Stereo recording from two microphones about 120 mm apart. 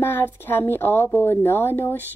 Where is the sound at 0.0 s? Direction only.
20° left (ahead or behind).